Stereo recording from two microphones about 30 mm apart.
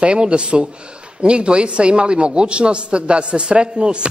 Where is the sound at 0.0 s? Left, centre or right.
Right.